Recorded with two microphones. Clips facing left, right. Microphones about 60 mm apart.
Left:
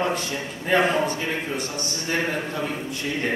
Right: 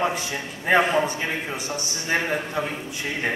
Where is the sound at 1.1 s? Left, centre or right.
Centre.